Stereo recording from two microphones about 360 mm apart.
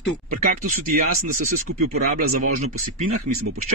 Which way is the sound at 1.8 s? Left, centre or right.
Right.